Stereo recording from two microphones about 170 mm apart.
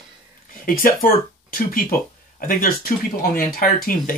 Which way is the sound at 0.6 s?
55° left (ahead or behind).